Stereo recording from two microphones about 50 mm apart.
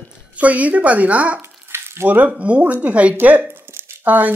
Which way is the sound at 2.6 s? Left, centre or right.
Right.